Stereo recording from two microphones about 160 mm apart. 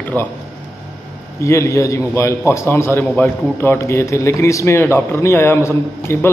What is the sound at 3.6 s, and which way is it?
A man's voice, 15° left (ahead or behind).